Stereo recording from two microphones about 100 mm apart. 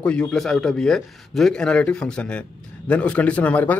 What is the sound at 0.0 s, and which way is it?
A man's voice, 10° left (ahead or behind).